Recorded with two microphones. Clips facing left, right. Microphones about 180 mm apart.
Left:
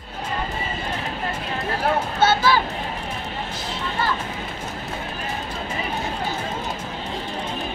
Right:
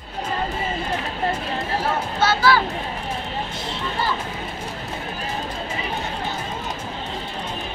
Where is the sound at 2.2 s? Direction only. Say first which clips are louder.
Even; 25° left (ahead or behind).